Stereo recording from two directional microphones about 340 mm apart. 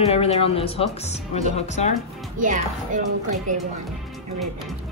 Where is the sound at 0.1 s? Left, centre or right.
Centre.